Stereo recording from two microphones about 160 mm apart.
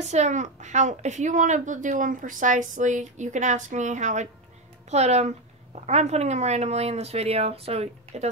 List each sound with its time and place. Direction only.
0.0 s a woman's voice: 45° right (ahead or behind)